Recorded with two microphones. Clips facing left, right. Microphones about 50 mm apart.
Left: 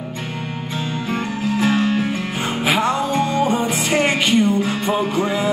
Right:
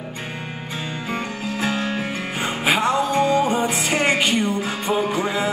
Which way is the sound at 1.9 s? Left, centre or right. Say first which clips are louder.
Left 5 dB; right.